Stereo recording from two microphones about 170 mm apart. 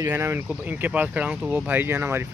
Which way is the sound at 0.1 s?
10° right (ahead or behind).